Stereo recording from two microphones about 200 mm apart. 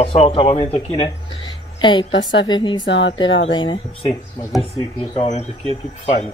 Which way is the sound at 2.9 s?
65° left (ahead or behind).